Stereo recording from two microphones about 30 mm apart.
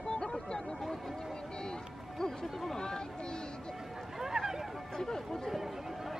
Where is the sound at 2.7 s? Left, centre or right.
Left.